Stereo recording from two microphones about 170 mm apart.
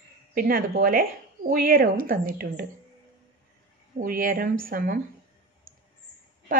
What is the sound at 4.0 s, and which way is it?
Speech, 55° right (ahead or behind).